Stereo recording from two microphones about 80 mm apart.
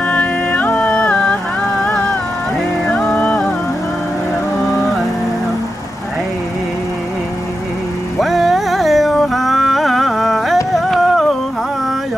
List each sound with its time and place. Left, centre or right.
0.1 s music: centre
2.9 s music: centre
8.2 s music: centre